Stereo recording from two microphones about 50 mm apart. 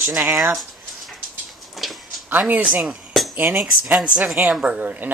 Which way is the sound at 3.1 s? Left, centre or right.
Centre.